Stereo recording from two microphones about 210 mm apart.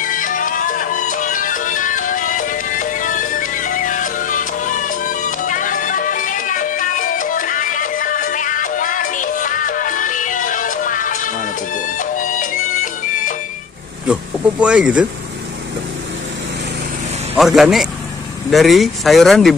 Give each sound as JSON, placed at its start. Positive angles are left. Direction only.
{"t": 0.0, "sound": "music", "side_deg": 40}
{"t": 14.6, "sound": "speech", "side_deg": -5}
{"t": 17.4, "sound": "speech", "side_deg": 0}